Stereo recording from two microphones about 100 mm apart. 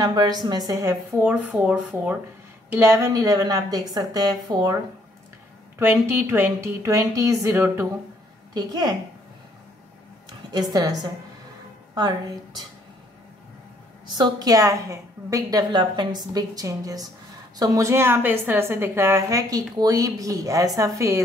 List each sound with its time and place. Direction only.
0.0 s a woman's voice: 40° right (ahead or behind)
1.2 s speech: 10° right (ahead or behind)
2.7 s a woman's voice: 25° right (ahead or behind); by 4.7 s 40° right (ahead or behind)
5.8 s a woman's voice: 25° right (ahead or behind)
8.5 s a woman's voice: 40° right (ahead or behind)
10.5 s a woman's voice: 40° right (ahead or behind)
14.1 s a woman's voice: 45° right (ahead or behind)
15.7 s a woman's voice: 50° right (ahead or behind); by 21.2 s 30° right (ahead or behind)